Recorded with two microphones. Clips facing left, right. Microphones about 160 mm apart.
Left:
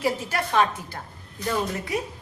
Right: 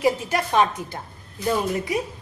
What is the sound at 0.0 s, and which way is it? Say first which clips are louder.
A woman's voice: right 4 dB; 15° right (ahead or behind).